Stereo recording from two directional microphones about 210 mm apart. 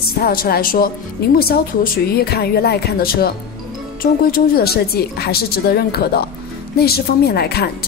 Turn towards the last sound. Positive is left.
turn(degrees=50)  # may be behind; listen again after turning